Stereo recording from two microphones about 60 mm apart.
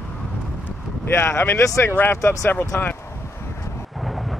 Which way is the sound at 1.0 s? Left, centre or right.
Left.